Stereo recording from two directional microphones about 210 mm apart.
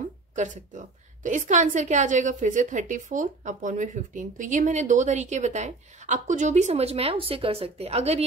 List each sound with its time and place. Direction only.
0.4 s a woman's voice: 35° right (ahead or behind)